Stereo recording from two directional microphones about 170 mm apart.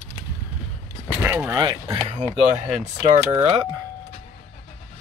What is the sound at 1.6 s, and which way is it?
Speech, 25° right (ahead or behind).